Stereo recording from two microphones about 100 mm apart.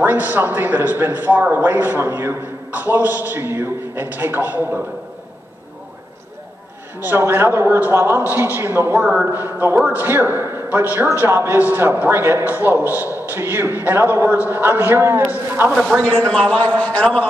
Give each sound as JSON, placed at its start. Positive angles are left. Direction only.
{"t": 0.0, "sound": "a man's voice", "side_deg": -20}
{"t": 7.0, "sound": "a man's voice", "side_deg": -20}
{"t": 9.0, "sound": "a man's voice", "side_deg": -10}
{"t": 9.3, "sound": "a man's voice", "side_deg": -25}
{"t": 16.1, "sound": "a man's voice", "side_deg": 10}